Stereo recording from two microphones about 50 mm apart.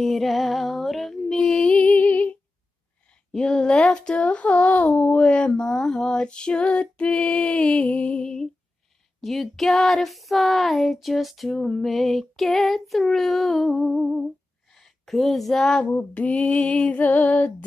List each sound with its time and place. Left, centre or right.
0.0 s music: centre
1.7 s music: left
3.3 s speech: centre
4.2 s speech: left
9.2 s a sound: centre
14.8 s a woman's voice: centre
15.8 s speech: left